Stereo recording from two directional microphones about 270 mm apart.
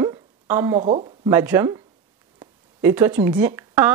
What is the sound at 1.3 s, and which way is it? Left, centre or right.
Speech, centre.